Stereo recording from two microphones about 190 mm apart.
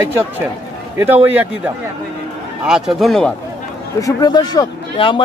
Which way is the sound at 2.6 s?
5° right (ahead or behind).